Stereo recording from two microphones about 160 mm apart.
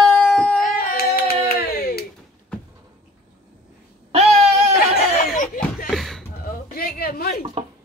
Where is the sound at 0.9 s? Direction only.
75° left (ahead or behind).